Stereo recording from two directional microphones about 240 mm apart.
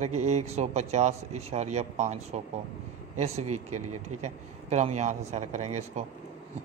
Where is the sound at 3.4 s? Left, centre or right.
Right.